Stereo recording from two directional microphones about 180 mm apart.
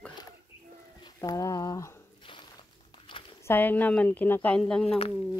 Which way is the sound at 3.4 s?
10° left (ahead or behind).